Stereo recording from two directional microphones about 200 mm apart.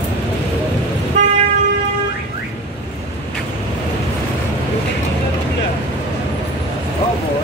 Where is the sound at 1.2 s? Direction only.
35° right (ahead or behind).